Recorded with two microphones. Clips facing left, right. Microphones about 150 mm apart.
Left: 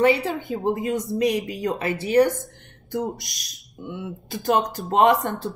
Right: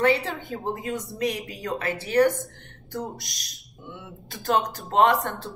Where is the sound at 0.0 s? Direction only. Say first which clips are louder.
Left 3 dB; 15° left (ahead or behind).